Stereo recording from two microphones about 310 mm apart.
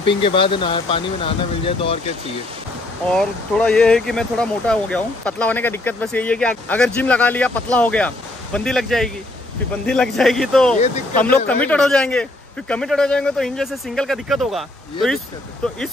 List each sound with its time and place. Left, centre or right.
0.0 s speech: centre
3.1 s speech: centre